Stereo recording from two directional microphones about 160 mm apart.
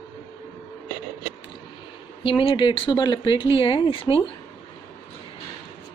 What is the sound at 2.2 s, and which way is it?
Speech, 30° left (ahead or behind).